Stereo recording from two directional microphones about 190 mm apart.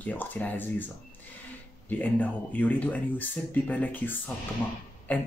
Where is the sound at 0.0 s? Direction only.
10° left (ahead or behind).